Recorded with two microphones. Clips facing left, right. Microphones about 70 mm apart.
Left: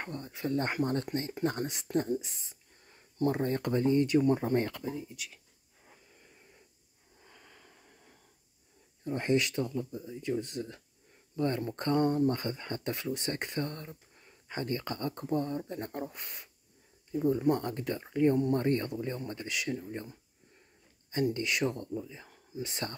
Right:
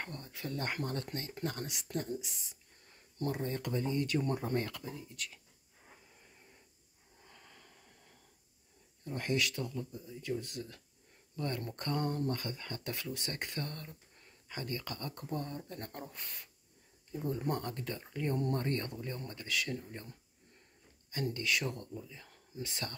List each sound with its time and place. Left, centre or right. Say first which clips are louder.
0.0 s speech: left 6 dB; left
3.3 s speech: left 7 dB; left
4.2 s speech: left 8 dB; left
4.6 s speech: left 5 dB; left
5.1 s speech: even; centre
7.2 s a sound: left 2 dB; centre
9.0 s speech: left 6 dB; left
17.4 s speech: left 8 dB; centre
17.6 s speech: left 6 dB; left
21.1 s speech: left 5 dB; left